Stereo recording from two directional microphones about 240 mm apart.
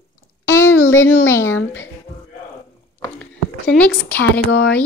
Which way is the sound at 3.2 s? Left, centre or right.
Centre.